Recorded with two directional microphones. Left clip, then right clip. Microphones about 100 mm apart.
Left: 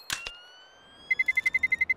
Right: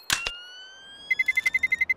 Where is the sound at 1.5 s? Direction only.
35° right (ahead or behind).